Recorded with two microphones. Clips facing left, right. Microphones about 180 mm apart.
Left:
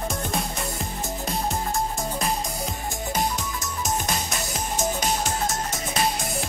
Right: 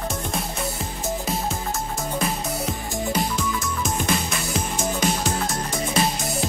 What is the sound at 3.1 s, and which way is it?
Music, 45° left (ahead or behind).